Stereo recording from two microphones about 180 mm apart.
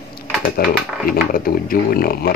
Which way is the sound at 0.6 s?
55° left (ahead or behind).